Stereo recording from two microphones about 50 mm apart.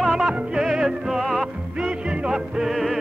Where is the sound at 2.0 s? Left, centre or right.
Centre.